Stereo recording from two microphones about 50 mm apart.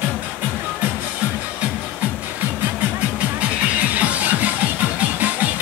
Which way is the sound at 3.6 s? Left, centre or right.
Right.